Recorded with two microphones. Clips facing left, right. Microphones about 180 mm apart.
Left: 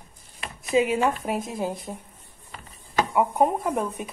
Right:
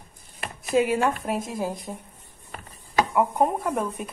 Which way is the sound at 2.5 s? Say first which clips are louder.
Right 3 dB; 50° right (ahead or behind).